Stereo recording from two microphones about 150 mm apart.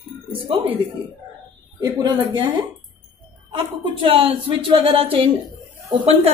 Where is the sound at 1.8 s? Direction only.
30° right (ahead or behind).